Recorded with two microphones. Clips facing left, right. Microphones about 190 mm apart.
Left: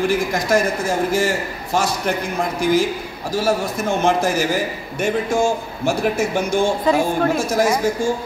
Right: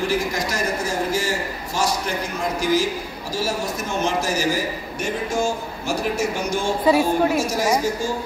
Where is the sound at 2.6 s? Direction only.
55° left (ahead or behind).